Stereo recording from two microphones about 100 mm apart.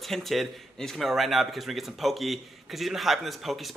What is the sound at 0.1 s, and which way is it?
Speech, centre (ahead or behind).